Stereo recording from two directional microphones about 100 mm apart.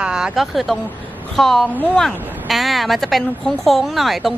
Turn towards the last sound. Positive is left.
turn(degrees=0)  # may be behind; listen again after turning